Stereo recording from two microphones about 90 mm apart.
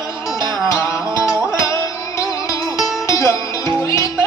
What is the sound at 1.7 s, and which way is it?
Music, 35° left (ahead or behind).